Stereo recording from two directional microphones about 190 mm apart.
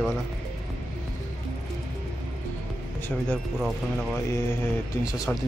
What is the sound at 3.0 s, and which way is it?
Speech, 5° left (ahead or behind).